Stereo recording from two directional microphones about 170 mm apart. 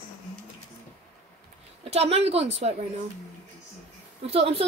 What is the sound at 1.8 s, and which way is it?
Speech, 35° right (ahead or behind).